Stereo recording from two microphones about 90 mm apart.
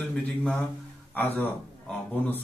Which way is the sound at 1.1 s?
20° left (ahead or behind).